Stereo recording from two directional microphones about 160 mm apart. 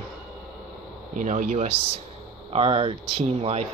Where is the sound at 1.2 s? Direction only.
50° right (ahead or behind).